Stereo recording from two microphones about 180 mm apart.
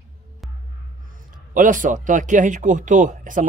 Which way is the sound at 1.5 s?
45° right (ahead or behind).